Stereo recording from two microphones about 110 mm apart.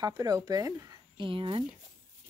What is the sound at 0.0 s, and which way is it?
Speech, 35° right (ahead or behind).